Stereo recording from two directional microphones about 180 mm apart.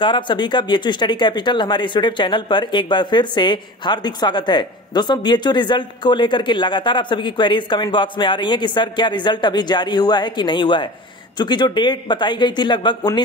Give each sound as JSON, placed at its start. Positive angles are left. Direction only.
{"t": 0.0, "sound": "speech", "side_deg": 25}